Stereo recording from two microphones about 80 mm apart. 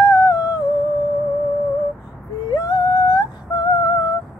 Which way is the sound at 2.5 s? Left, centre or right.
Left.